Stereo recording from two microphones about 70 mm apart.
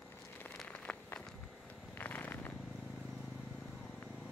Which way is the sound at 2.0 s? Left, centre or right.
Left.